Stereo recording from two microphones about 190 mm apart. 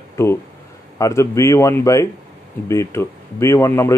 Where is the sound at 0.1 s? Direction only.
15° left (ahead or behind).